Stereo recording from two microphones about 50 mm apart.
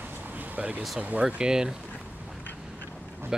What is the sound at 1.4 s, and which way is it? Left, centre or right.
Speech, centre.